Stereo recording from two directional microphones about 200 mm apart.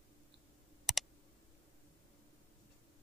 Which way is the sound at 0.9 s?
Centre (ahead or behind).